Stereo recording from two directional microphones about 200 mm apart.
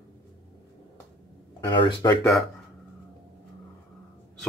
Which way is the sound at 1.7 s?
25° left (ahead or behind).